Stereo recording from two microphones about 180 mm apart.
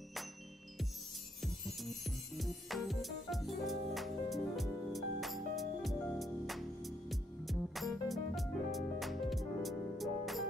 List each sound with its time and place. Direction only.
1.4 s music: centre (ahead or behind)